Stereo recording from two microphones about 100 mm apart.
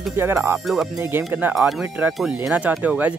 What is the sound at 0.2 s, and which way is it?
Speech, 25° right (ahead or behind).